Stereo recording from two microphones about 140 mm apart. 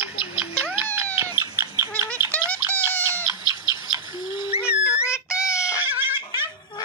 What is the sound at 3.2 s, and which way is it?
Bird, 25° right (ahead or behind).